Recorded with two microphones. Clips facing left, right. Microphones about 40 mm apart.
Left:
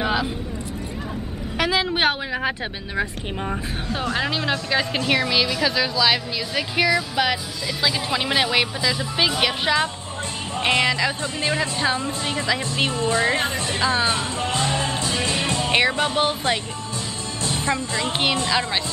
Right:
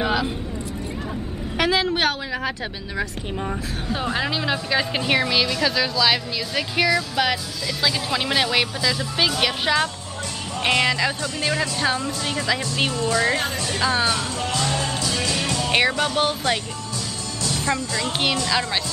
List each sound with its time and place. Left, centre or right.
0.0 s vehicle: centre
1.6 s a woman's voice: centre
2.0 s a woman's voice: centre
4.2 s a woman's voice: centre; by 12.4 s left
12.9 s music: left
16.0 s a woman's voice: centre
17.4 s music: left
18.5 s speech: centre